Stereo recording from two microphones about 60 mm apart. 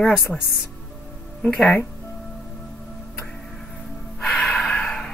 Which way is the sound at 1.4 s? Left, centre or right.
Centre.